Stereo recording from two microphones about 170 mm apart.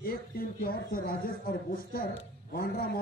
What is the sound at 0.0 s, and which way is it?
A man's voice, 60° left (ahead or behind).